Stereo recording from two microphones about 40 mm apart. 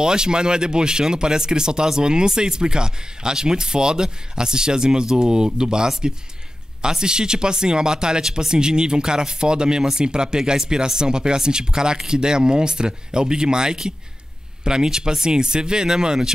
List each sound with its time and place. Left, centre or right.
0.0 s speech: centre